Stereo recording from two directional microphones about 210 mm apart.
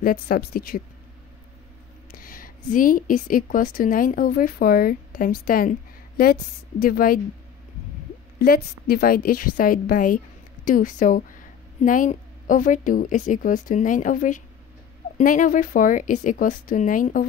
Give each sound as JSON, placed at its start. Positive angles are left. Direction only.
{"t": 0.0, "sound": "a woman's voice", "side_deg": 45}
{"t": 2.0, "sound": "a woman's voice", "side_deg": 40}
{"t": 8.4, "sound": "a woman's voice", "side_deg": 45}